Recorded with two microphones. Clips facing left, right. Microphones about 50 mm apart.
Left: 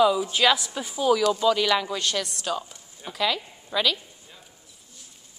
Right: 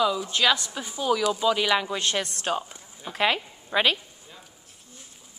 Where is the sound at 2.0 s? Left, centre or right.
Right.